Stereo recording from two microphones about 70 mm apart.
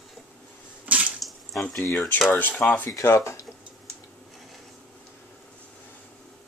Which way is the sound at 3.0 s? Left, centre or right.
Left.